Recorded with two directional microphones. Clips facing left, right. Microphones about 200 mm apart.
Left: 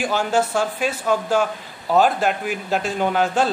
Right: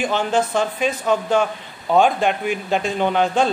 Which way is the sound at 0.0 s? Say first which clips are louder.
Right 1 dB; 10° left (ahead or behind).